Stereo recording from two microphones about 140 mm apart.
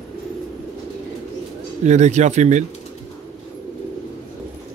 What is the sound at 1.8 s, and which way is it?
Speech, 55° right (ahead or behind).